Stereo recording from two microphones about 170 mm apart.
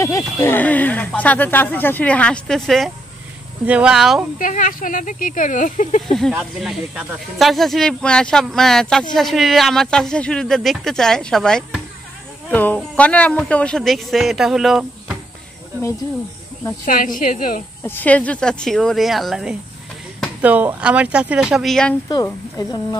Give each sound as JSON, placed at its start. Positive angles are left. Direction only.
{"t": 0.4, "sound": "speech", "side_deg": 10}
{"t": 4.4, "sound": "speech", "side_deg": 50}
{"t": 6.3, "sound": "speech", "side_deg": -5}
{"t": 16.8, "sound": "speech", "side_deg": 50}
{"t": 17.8, "sound": "speech", "side_deg": 10}
{"t": 22.1, "sound": "speech", "side_deg": 25}